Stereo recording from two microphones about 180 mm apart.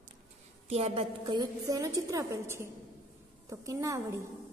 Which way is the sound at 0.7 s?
35° right (ahead or behind).